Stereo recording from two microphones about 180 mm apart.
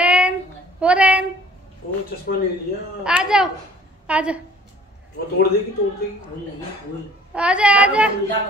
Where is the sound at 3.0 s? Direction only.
5° right (ahead or behind).